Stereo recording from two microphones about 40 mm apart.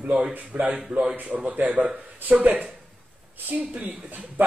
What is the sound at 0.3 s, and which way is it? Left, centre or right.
Speech, right.